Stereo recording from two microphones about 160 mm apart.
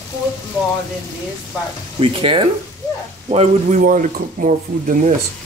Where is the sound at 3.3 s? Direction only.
50° right (ahead or behind).